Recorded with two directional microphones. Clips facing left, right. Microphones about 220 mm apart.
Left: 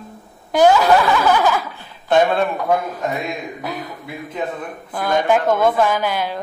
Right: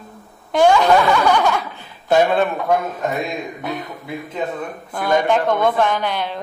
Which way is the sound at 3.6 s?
Centre (ahead or behind).